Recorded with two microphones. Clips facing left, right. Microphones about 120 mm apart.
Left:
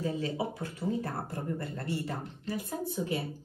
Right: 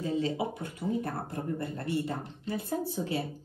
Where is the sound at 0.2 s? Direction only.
25° right (ahead or behind).